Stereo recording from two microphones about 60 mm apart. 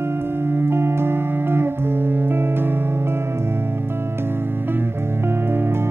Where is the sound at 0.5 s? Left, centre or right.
Right.